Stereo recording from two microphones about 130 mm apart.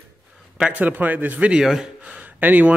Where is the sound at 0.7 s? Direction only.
15° right (ahead or behind).